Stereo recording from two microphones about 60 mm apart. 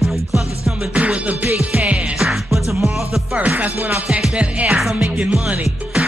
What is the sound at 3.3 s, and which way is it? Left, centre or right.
Music, right.